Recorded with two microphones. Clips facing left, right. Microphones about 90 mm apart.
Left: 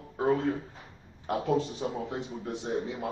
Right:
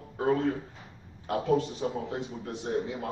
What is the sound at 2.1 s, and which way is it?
Speech, 20° right (ahead or behind).